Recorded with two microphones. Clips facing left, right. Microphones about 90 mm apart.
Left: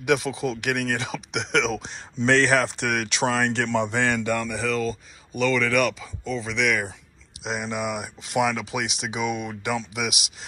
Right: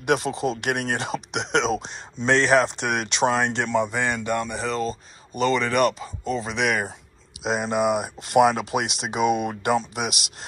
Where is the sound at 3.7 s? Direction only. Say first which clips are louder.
Even; 10° right (ahead or behind).